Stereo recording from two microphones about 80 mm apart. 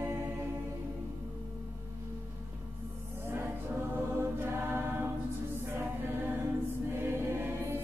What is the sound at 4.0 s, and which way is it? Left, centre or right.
Music, right.